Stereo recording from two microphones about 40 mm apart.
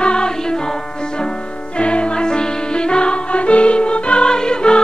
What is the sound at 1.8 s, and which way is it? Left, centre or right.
Music, left.